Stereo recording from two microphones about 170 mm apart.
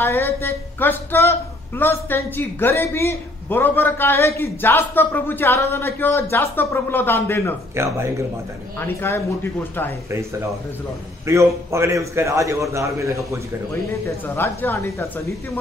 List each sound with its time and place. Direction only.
0.0 s a woman's voice: 15° left (ahead or behind)
7.7 s a man's voice: 15° right (ahead or behind)
8.7 s a woman's voice: 15° left (ahead or behind)
11.2 s a man's voice: 15° right (ahead or behind)
14.2 s a woman's voice: 10° left (ahead or behind)